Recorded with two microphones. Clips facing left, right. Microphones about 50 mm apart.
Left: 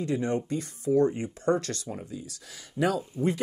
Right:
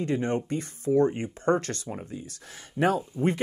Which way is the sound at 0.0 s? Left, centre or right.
Right.